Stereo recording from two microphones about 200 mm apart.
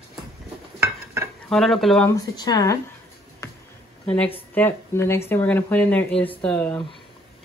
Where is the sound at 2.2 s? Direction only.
20° left (ahead or behind).